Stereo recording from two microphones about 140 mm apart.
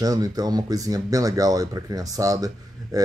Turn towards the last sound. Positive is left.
turn(degrees=-25)  # may be behind; listen again after turning